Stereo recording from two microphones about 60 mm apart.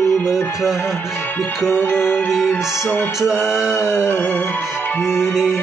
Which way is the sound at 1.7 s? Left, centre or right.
Left.